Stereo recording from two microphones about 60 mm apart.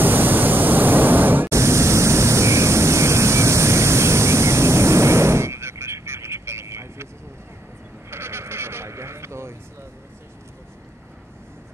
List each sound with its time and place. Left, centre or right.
0.0 s vehicle: right
1.5 s pink noise: right
8.1 s vehicle: right